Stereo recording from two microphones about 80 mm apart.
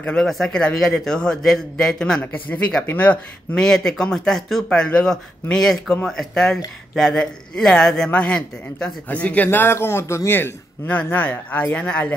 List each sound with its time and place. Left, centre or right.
0.0 s a man's voice: centre
3.5 s a man's voice: centre